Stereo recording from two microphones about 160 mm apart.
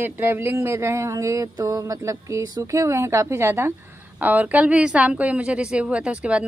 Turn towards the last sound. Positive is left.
turn(degrees=-5)  # may be behind; listen again after turning